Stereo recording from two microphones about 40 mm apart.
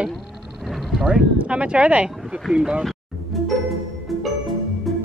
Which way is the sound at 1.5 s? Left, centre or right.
Right.